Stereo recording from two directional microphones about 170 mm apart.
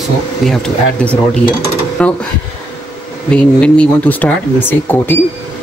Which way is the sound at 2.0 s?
5° left (ahead or behind).